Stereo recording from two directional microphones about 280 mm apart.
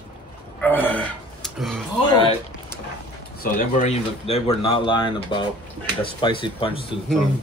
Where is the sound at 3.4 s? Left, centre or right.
Left.